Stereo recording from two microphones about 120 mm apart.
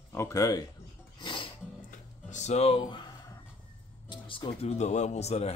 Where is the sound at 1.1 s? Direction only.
45° left (ahead or behind).